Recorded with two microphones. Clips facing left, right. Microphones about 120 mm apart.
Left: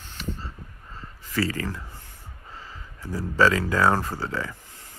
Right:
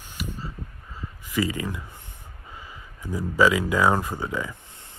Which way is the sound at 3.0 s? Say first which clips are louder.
Right 1 dB; 15° right (ahead or behind).